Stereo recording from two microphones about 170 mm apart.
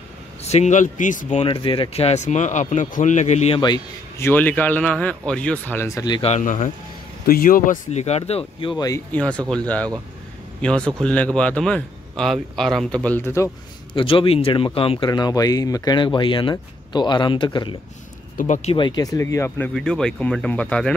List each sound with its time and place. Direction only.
0.4 s speech: 40° left (ahead or behind)
1.4 s speech: 30° left (ahead or behind)
4.2 s speech: 10° left (ahead or behind)
6.2 s speech: 45° left (ahead or behind)
7.2 s speech: 55° left (ahead or behind); by 9.0 s 20° left (ahead or behind)
9.1 s speech: 10° left (ahead or behind)
10.6 s a man's voice: 5° left (ahead or behind)
13.9 s speech: 30° left (ahead or behind)
18.4 s speech: 45° left (ahead or behind)
18.8 s speech: 25° left (ahead or behind)
19.7 s a man's voice: 5° left (ahead or behind)